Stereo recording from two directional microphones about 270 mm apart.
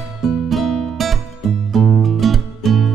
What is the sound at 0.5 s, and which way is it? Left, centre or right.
Music, centre.